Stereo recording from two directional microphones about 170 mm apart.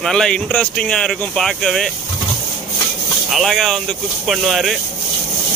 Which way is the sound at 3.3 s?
Centre (ahead or behind).